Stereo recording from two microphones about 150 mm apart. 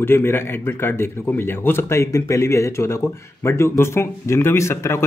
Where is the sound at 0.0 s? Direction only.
15° left (ahead or behind).